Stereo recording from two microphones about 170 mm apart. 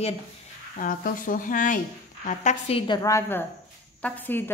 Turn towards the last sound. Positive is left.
turn(degrees=10)  # may be behind; listen again after turning